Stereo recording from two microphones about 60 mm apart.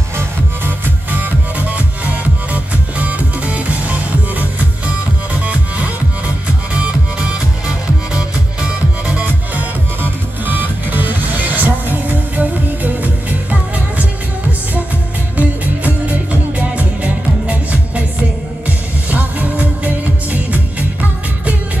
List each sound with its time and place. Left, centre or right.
0.7 s music: right
15.3 s music: right
19.0 s music: right